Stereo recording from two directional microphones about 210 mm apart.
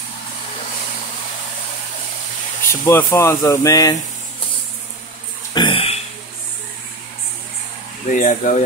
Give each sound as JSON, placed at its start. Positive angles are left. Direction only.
{"t": 2.7, "sound": "speech", "side_deg": 15}
{"t": 5.5, "sound": "a sound", "side_deg": 25}
{"t": 8.1, "sound": "speech", "side_deg": 40}